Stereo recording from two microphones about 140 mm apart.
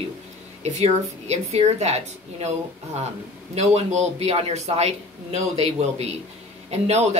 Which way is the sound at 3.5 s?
55° right (ahead or behind).